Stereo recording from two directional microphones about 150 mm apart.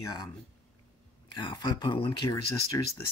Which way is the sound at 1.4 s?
30° left (ahead or behind).